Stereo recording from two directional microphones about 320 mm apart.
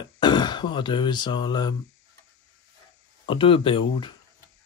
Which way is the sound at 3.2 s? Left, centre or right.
Centre.